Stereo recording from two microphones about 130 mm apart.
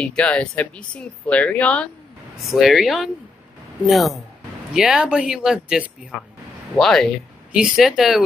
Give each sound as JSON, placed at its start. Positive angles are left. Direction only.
{"t": 0.0, "sound": "speech", "side_deg": 10}
{"t": 2.4, "sound": "speech", "side_deg": 0}